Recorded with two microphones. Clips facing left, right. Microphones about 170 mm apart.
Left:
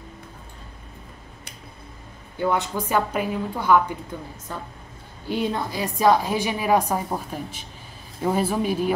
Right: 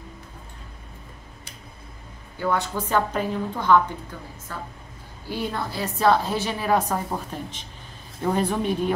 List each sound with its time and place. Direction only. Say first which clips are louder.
2.3 s a woman's voice: left 2 dB; 20° left (ahead or behind)